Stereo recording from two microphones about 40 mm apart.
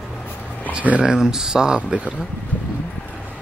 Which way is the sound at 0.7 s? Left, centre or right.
Right.